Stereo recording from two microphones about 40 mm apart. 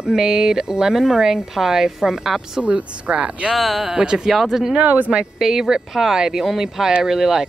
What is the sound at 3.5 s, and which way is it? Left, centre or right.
Speech, centre.